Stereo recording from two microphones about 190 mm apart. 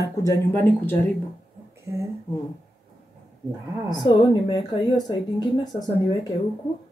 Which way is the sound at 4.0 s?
25° left (ahead or behind).